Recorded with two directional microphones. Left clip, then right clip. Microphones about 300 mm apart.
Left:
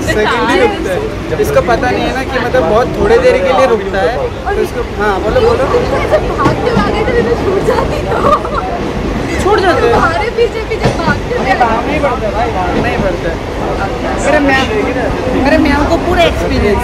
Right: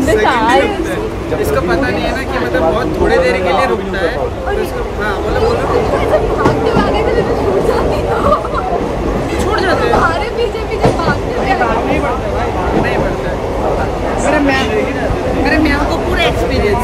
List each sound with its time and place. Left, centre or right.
0.2 s speech: right
3.1 s speech: centre
15.4 s speech: centre